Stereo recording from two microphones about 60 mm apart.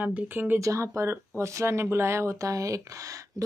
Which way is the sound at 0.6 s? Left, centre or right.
Right.